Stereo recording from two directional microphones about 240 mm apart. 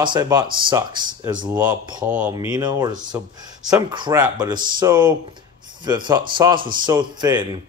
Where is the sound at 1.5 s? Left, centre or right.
Centre.